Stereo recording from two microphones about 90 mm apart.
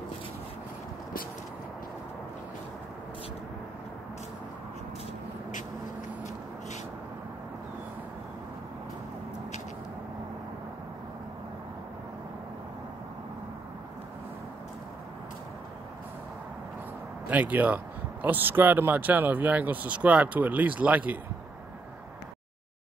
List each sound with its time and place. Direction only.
17.3 s speech: 20° right (ahead or behind)